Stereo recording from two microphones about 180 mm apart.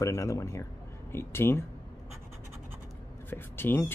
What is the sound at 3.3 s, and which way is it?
Speech, 10° left (ahead or behind).